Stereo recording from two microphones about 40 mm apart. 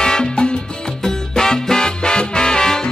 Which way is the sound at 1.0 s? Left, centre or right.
Centre.